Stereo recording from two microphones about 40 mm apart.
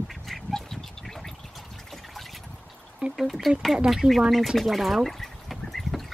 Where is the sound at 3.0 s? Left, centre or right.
Right.